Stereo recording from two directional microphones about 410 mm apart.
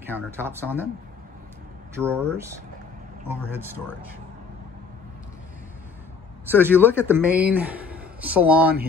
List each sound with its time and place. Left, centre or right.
0.0 s a man's voice: centre
2.0 s a man's voice: centre
6.5 s a man's voice: centre